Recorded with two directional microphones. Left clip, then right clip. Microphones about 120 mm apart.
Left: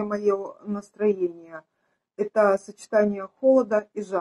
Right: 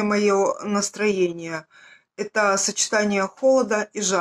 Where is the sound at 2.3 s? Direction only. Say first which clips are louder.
Right 1 dB; 20° right (ahead or behind).